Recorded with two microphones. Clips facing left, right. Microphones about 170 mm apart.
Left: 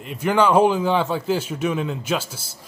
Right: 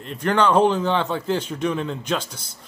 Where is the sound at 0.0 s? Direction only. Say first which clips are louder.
Left 1 dB; 5° left (ahead or behind).